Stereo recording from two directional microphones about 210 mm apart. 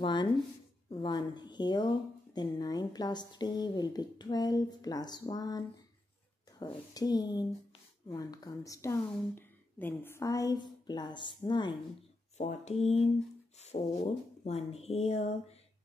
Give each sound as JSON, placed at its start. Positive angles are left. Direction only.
{"t": 0.0, "sound": "speech", "side_deg": 20}
{"t": 6.6, "sound": "speech", "side_deg": 20}
{"t": 12.4, "sound": "speech", "side_deg": 35}